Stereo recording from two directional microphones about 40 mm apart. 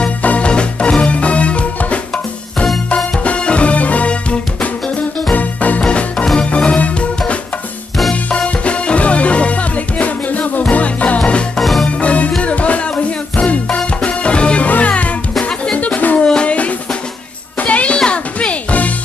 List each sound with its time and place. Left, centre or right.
0.2 s music: left
0.5 s music: left
3.3 s music: left
5.9 s music: left
6.7 s music: left
11.5 s music: centre
12.0 s music: left
16.4 s drum: left
17.6 s music: left
17.9 s music: left